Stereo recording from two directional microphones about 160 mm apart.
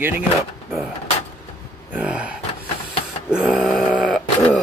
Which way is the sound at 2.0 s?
5° right (ahead or behind).